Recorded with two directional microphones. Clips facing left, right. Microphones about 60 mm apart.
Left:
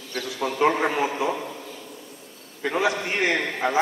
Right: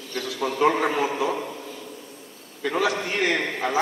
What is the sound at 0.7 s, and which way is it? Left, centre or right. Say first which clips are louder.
Speech: right 1 dB; centre.